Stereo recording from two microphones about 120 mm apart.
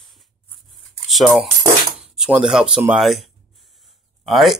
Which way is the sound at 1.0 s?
Centre (ahead or behind).